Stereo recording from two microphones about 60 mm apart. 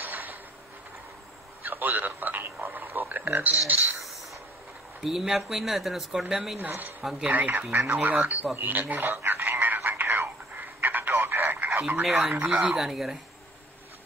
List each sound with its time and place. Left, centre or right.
0.0 s a sound: right
1.6 s a man's voice: right
5.0 s speech: centre
7.2 s speech: right
8.5 s a sound: right
9.8 s telephone: right
12.1 s speech: centre
12.4 s speech: right
12.7 s speech: centre